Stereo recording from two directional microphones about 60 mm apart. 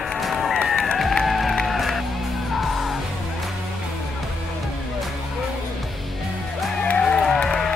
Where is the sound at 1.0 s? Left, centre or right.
Centre.